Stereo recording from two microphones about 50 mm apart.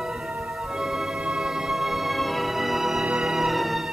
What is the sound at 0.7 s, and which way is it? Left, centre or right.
Music, centre.